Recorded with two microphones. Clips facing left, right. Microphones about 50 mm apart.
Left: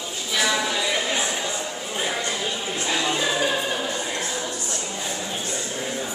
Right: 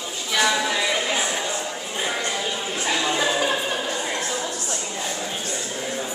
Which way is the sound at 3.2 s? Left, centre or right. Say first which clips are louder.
Right 1 dB; centre.